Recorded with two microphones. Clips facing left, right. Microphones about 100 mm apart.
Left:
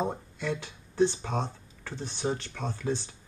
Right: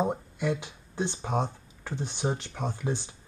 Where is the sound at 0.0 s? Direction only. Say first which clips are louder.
Right 3 dB; 15° right (ahead or behind).